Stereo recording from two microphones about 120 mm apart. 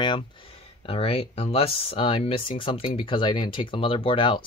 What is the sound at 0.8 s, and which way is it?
Speech, 50° left (ahead or behind).